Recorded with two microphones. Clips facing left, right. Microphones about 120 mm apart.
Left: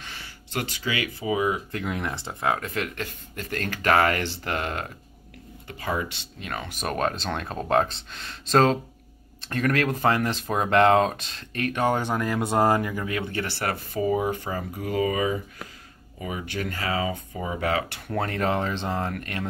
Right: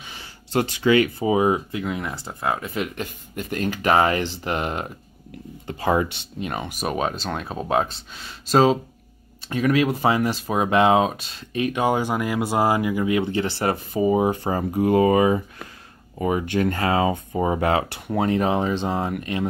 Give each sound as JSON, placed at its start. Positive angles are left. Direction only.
{"t": 0.0, "sound": "a sound", "side_deg": -20}
{"t": 0.8, "sound": "speech", "side_deg": -35}
{"t": 1.7, "sound": "speech", "side_deg": -5}
{"t": 3.0, "sound": "speech", "side_deg": -15}
{"t": 5.7, "sound": "speech", "side_deg": -35}
{"t": 6.4, "sound": "speech", "side_deg": -20}
{"t": 6.7, "sound": "speech", "side_deg": -5}
{"t": 14.4, "sound": "speech", "side_deg": -40}
{"t": 17.1, "sound": "speech", "side_deg": -45}
{"t": 18.0, "sound": "speech", "side_deg": -15}